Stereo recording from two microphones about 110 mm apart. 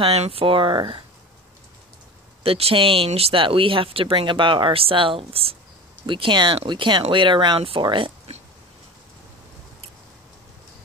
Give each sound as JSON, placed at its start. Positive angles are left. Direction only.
{"t": 0.0, "sound": "speech", "side_deg": -65}
{"t": 2.4, "sound": "speech", "side_deg": -60}